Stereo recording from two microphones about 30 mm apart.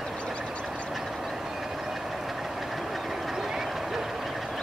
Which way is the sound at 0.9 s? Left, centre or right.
Centre.